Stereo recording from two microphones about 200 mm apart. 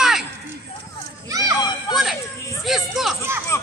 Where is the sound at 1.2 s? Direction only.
20° right (ahead or behind).